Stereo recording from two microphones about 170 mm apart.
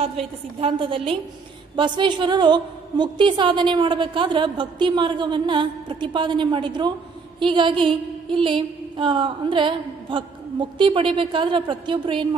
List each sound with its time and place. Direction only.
0.0 s a woman's voice: 35° right (ahead or behind)